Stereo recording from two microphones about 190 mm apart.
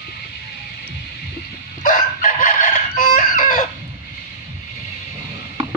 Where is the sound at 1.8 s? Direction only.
45° left (ahead or behind).